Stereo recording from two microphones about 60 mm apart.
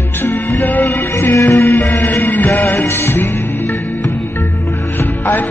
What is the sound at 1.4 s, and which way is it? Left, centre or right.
Music, left.